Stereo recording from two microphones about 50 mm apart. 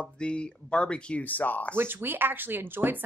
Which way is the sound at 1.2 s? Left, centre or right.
Left.